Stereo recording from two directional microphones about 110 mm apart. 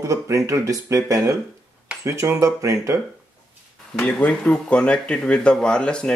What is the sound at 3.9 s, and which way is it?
Speech, 15° left (ahead or behind).